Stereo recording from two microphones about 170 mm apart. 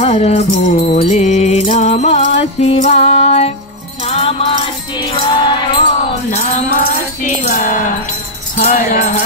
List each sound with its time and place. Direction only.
0.0 s music: 35° left (ahead or behind)
7.2 s music: 50° left (ahead or behind)